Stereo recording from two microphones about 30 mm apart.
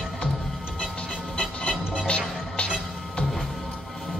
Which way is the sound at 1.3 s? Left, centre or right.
Left.